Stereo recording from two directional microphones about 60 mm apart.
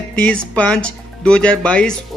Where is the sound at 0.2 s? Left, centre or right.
Centre.